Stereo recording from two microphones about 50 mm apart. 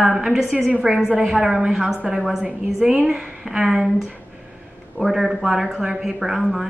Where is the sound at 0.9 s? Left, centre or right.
Centre.